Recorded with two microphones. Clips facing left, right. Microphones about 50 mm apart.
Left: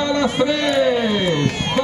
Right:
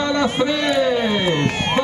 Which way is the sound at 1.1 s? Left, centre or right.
Right.